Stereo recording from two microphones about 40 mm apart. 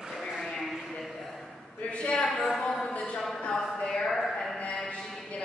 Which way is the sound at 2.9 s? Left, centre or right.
Left.